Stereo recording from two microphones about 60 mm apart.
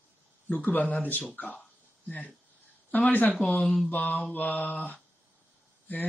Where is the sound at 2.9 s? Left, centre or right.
Left.